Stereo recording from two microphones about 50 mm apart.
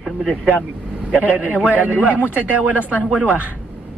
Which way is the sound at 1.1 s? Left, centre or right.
Right.